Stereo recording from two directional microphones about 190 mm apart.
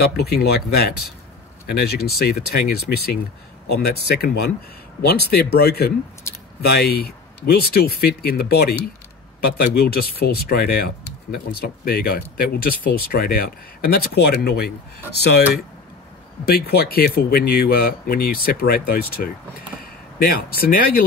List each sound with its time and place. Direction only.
0.0 s speech: 55° left (ahead or behind)
16.4 s speech: 55° left (ahead or behind)